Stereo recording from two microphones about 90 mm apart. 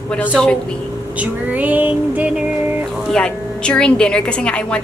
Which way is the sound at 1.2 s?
15° right (ahead or behind).